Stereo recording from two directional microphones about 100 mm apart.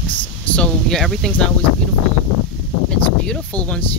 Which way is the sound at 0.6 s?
5° left (ahead or behind).